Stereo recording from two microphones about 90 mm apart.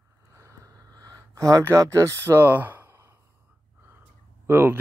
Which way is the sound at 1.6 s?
35° right (ahead or behind).